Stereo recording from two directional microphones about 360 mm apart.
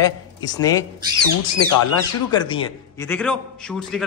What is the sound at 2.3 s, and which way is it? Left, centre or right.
A man's voice, centre.